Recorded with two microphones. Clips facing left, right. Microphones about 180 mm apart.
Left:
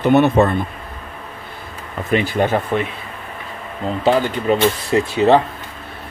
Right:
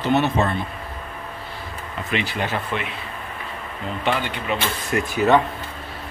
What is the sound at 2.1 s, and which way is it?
Speech, 50° left (ahead or behind).